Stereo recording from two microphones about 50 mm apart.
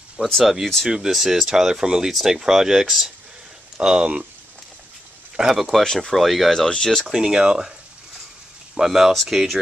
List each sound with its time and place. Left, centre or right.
0.2 s speech: right
5.3 s speech: centre
7.1 s speech: centre
8.7 s speech: centre